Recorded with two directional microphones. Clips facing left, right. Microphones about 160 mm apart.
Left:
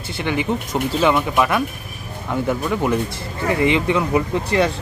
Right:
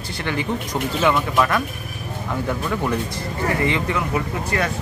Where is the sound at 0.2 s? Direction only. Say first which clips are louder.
Left 3 dB; 15° left (ahead or behind).